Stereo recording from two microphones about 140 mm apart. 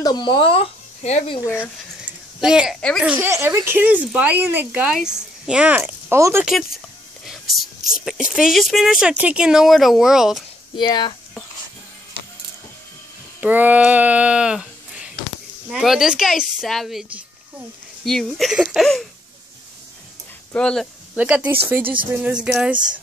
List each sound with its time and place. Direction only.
0.0 s speech: 30° left (ahead or behind); by 1.3 s 45° left (ahead or behind)
2.0 s a sound: 5° right (ahead or behind)
3.0 s speech: 15° right (ahead or behind)
6.4 s speech: 5° right (ahead or behind)
7.2 s whispering: centre (ahead or behind)
8.0 s speech: centre (ahead or behind)
10.8 s speech: 30° left (ahead or behind)
13.4 s a sound: 10° right (ahead or behind)
15.7 s speech: centre (ahead or behind)
20.5 s speech: 5° left (ahead or behind)
21.1 s speech: 10° right (ahead or behind)